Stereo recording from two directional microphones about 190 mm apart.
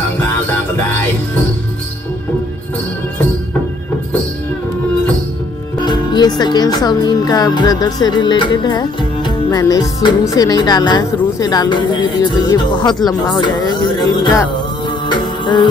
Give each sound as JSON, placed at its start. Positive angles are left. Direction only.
{"t": 0.2, "sound": "music", "side_deg": 10}
{"t": 5.9, "sound": "speech", "side_deg": 20}
{"t": 15.0, "sound": "music", "side_deg": 25}